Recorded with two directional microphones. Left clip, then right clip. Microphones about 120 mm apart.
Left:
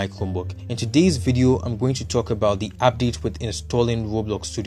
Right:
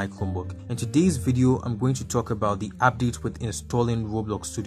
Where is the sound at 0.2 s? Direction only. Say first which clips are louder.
Left 4 dB; 10° left (ahead or behind).